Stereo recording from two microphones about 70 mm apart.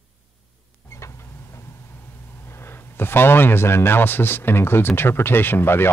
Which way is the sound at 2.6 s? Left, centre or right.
Left.